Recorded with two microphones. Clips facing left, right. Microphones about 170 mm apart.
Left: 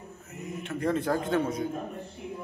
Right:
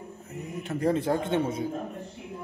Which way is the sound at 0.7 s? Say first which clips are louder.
Right 2 dB; 30° right (ahead or behind).